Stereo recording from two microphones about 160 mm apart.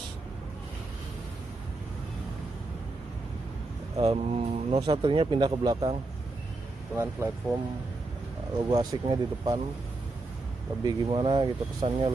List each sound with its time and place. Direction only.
4.0 s speech: 35° right (ahead or behind)
7.0 s speech: 15° right (ahead or behind)
8.5 s speech: 25° right (ahead or behind)
10.8 s speech: 25° right (ahead or behind)